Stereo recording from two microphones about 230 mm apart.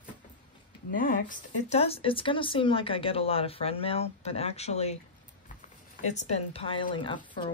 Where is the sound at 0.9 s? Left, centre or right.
Left.